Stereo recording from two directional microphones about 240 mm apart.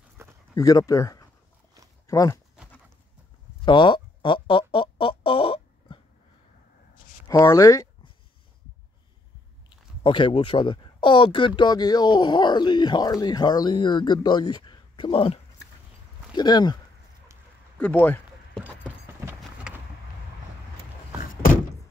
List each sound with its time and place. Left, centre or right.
0.2 s dog: centre
0.6 s speech: centre
3.6 s music: centre
7.2 s speech: centre
10.0 s speech: left
17.7 s a sound: centre
19.7 s vehicle: centre